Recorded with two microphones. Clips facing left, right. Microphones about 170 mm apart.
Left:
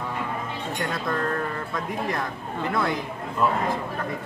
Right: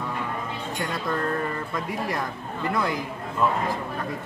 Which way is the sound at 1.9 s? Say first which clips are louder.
Left 2 dB; centre (ahead or behind).